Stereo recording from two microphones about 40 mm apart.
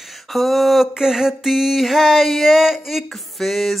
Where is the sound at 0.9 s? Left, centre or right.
Centre.